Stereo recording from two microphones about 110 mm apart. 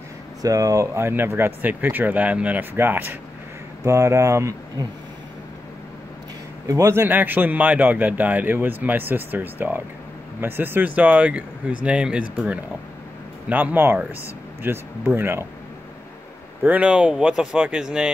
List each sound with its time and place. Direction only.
0.4 s speech: 30° right (ahead or behind)
6.7 s speech: 25° right (ahead or behind)
16.6 s speech: 15° right (ahead or behind)